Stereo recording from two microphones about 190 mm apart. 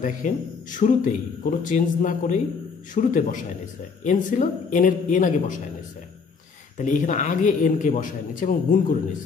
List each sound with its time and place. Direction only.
0.0 s speech: 45° left (ahead or behind)
6.8 s speech: 40° left (ahead or behind)